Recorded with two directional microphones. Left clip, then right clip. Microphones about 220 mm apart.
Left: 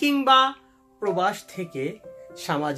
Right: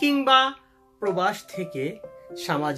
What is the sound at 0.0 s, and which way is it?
Speech, 10° left (ahead or behind).